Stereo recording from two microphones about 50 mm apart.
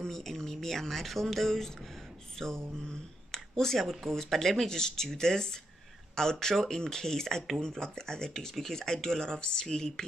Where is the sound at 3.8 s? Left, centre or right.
Centre.